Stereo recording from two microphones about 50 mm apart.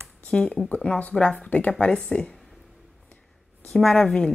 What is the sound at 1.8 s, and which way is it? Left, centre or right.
Speech, centre.